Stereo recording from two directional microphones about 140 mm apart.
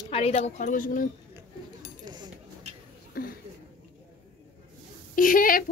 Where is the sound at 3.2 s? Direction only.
90° left.